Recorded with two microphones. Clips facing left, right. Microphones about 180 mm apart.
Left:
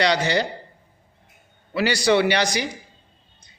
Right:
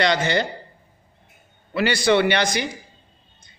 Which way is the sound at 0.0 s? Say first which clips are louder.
Even; 55° right (ahead or behind).